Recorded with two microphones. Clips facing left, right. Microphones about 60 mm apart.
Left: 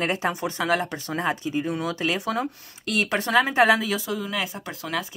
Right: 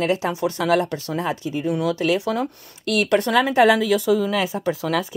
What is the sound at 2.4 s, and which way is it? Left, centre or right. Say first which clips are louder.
Speech: right 4 dB; centre.